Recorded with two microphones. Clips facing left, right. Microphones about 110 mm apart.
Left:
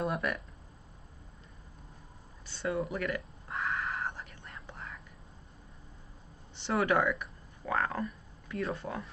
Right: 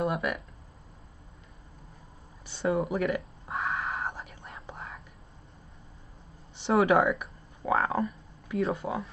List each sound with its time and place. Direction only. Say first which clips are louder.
0.0 s speech: right 3 dB; 5° right (ahead or behind)
2.4 s a sound: right 5 dB; 20° right (ahead or behind)
4.2 s whispering: right 3 dB; 15° right (ahead or behind)
4.6 s whispering: right 3 dB; 25° right (ahead or behind)
6.8 s speech: right 5 dB; 15° right (ahead or behind)